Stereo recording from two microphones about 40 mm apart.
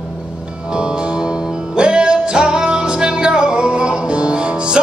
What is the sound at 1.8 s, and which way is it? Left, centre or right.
Music, right.